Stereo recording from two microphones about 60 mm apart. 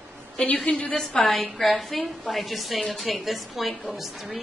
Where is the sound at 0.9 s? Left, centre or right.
Centre.